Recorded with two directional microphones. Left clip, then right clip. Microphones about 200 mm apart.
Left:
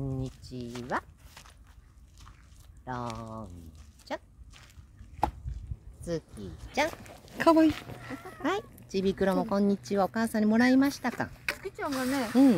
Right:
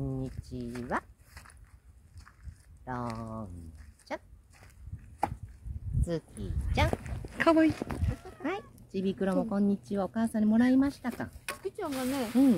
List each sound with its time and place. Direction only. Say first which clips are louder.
0.0 s speech: even; 20° right (ahead or behind)
0.8 s a sound: left 1 dB; 20° right (ahead or behind)
2.8 s speech: left 1 dB; 20° right (ahead or behind)
6.4 s speech: left 2 dB; centre (ahead or behind)
7.3 s speech: left 2 dB; 25° left (ahead or behind)
11.4 s speech: even; 30° right (ahead or behind)